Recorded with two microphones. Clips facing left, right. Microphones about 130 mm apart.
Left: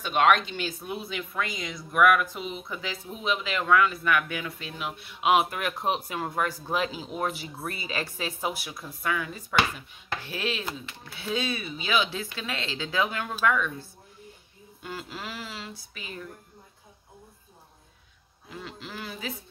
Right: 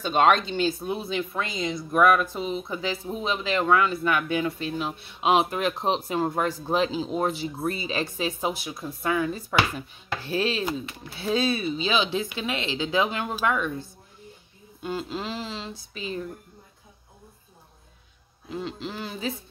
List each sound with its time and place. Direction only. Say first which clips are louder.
0.0 s speech: right 2 dB; 30° right (ahead or behind)
18.5 s speech: right 7 dB; 25° right (ahead or behind)